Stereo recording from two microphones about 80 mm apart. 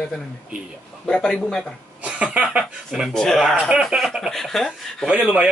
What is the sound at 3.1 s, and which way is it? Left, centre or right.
Speech, centre.